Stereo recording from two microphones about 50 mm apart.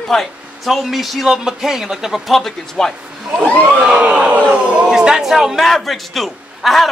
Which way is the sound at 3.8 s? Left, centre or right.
Centre.